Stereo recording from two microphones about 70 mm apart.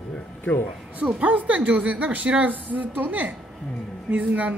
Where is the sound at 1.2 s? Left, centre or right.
Right.